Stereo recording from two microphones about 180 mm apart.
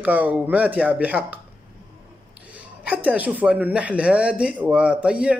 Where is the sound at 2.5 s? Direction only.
10° right (ahead or behind).